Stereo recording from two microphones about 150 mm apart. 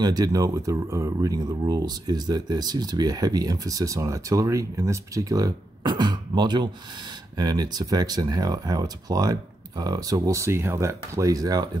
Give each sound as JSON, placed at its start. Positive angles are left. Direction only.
{"t": 0.0, "sound": "speech", "side_deg": -25}